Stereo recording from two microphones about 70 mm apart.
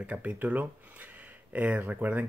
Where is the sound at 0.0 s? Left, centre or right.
Right.